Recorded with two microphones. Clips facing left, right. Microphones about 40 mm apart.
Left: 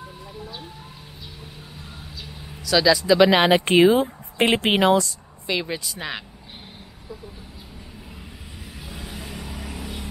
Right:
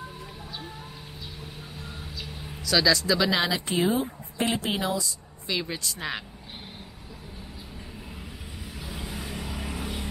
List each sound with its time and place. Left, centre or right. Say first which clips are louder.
1.4 s vehicle: even; centre
2.8 s speech: left 6 dB; centre
3.2 s speech: left 9 dB; left
3.5 s speech: left 10 dB; left
5.5 s speech: left 4 dB; centre
8.7 s vehicle: even; centre
9.6 s vehicle: even; centre